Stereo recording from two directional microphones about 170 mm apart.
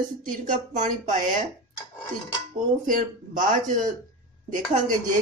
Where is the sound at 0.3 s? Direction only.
50° right (ahead or behind).